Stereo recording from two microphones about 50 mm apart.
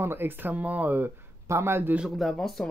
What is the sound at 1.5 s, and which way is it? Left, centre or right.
Speech, right.